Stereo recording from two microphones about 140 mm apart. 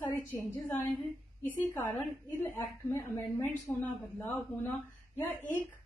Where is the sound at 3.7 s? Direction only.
10° left (ahead or behind).